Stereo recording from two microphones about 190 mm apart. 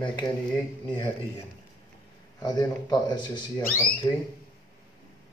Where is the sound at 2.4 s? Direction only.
20° left (ahead or behind).